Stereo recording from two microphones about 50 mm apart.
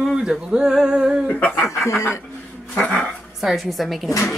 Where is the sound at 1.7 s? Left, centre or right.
Left.